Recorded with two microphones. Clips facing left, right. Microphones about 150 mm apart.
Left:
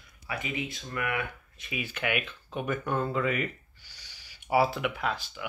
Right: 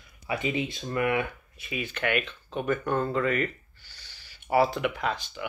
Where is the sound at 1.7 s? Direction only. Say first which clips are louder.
Right 3 dB; 5° left (ahead or behind).